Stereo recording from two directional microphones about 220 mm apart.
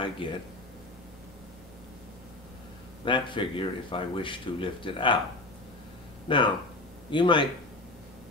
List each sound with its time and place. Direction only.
0.2 s speech: 25° left (ahead or behind)
3.1 s speech: 20° left (ahead or behind)
6.2 s speech: 20° left (ahead or behind)